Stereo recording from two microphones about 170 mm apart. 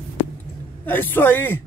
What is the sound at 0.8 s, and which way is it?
Speech, 10° left (ahead or behind).